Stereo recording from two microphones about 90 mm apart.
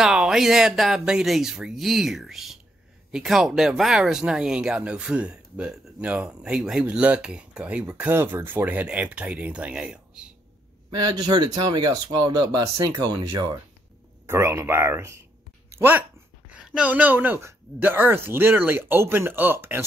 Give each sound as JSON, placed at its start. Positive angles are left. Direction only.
{"t": 0.0, "sound": "speech", "side_deg": -5}
{"t": 8.1, "sound": "speech", "side_deg": -25}
{"t": 10.9, "sound": "speech", "side_deg": -55}
{"t": 14.2, "sound": "speech", "side_deg": -30}
{"t": 15.7, "sound": "dog", "side_deg": -20}
{"t": 16.7, "sound": "speech", "side_deg": -15}